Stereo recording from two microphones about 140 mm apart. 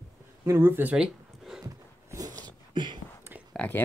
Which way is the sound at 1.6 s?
25° right (ahead or behind).